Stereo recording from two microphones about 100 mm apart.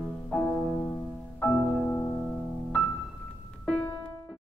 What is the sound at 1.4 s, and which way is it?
Music, 15° left (ahead or behind).